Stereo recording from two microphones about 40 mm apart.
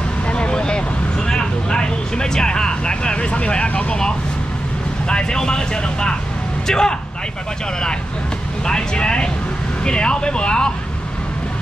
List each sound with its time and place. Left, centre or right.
0.3 s vehicle: left
5.0 s speech: left
8.6 s speech: left